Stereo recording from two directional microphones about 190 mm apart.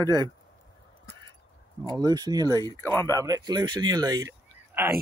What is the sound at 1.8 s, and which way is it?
Speech, 20° right (ahead or behind).